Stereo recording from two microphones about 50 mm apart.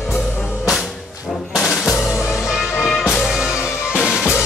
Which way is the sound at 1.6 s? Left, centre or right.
Centre.